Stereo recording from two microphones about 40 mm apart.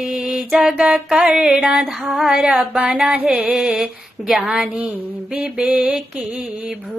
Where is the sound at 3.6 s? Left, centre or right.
Centre.